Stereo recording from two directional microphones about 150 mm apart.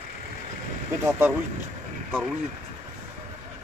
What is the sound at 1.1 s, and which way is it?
Speech, 15° right (ahead or behind).